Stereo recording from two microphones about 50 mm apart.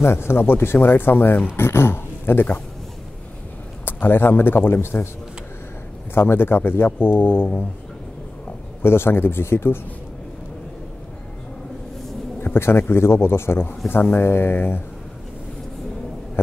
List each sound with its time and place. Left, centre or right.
0.0 s a man's voice: left
1.6 s a man's voice: left
3.8 s a man's voice: left
6.1 s a man's voice: left
8.8 s a man's voice: left
12.4 s a sound: left
12.8 s a man's voice: left